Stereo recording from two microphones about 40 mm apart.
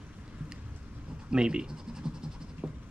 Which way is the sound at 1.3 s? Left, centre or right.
Right.